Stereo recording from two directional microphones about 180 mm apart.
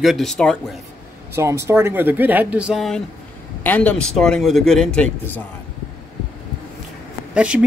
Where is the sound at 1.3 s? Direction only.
15° right (ahead or behind); by 5.1 s 5° left (ahead or behind).